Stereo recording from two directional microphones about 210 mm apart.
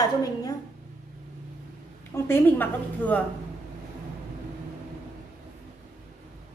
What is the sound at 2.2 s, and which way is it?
A woman's voice, 10° left (ahead or behind).